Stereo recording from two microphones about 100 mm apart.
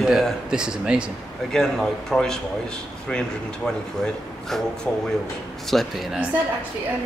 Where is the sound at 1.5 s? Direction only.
5° left (ahead or behind).